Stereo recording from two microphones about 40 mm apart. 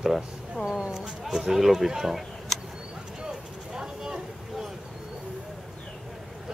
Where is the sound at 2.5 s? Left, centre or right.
Centre.